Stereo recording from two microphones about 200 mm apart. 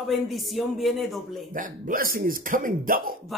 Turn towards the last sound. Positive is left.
turn(degrees=-45)  # may be behind; listen again after turning